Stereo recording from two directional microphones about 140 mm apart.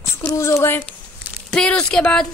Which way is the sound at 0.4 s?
20° left (ahead or behind).